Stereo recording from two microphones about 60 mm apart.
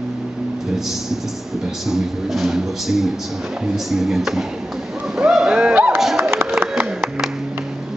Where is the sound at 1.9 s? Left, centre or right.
Centre.